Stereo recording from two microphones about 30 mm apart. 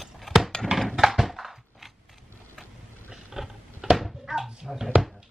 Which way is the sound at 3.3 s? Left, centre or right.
Centre.